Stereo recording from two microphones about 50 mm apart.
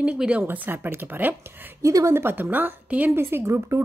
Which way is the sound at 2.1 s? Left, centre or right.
Right.